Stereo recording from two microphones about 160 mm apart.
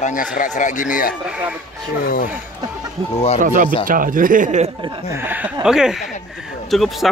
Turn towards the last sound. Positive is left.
turn(degrees=0)  # may be behind; listen again after turning